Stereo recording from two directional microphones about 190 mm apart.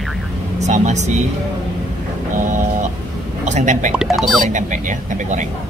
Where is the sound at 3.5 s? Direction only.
40° right (ahead or behind).